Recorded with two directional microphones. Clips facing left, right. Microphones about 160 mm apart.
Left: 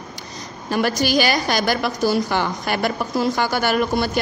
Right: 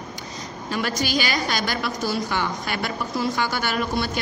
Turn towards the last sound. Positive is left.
turn(degrees=45)  # may be behind; listen again after turning